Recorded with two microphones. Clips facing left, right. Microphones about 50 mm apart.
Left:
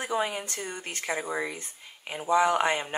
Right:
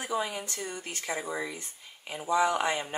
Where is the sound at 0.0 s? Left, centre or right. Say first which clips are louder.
Left 3 dB; left.